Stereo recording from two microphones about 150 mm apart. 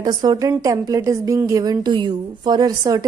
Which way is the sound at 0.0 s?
30° right (ahead or behind).